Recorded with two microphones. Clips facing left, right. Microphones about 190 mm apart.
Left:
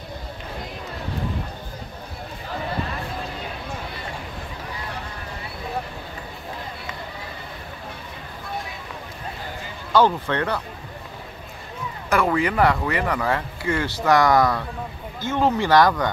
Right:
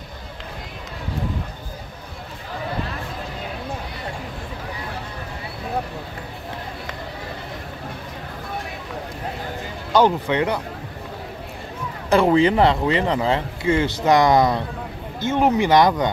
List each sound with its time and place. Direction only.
9.9 s speech: 15° right (ahead or behind)
12.1 s speech: 25° right (ahead or behind)